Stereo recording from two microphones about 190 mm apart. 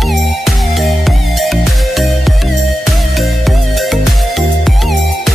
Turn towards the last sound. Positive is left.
turn(degrees=0)  # may be behind; listen again after turning